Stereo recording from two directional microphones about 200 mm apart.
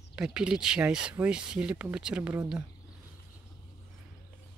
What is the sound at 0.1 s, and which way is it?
Speech, 5° right (ahead or behind).